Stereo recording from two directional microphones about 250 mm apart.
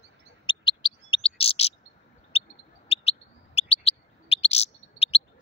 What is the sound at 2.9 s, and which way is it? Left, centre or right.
Bird, left.